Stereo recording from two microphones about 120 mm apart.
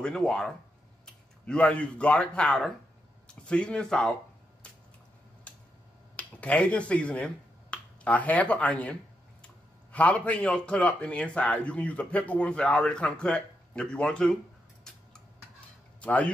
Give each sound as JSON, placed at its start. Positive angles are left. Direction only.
{"t": 0.0, "sound": "speech", "side_deg": 5}
{"t": 5.5, "sound": "a sound", "side_deg": 10}
{"t": 6.1, "sound": "speech", "side_deg": 10}
{"t": 9.9, "sound": "a man's voice", "side_deg": 10}
{"t": 16.0, "sound": "speech", "side_deg": 10}